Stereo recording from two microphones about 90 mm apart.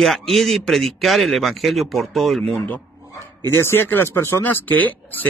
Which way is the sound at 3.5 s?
25° left (ahead or behind).